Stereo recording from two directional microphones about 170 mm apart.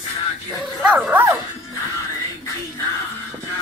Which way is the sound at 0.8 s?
10° right (ahead or behind).